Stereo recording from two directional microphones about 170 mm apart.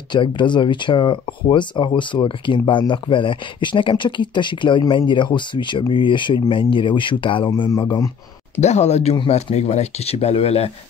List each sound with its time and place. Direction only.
0.1 s speech: 25° left (ahead or behind)
8.5 s speech: 40° left (ahead or behind)